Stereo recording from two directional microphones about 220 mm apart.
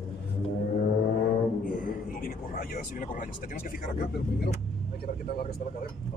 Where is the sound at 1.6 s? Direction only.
40° left (ahead or behind).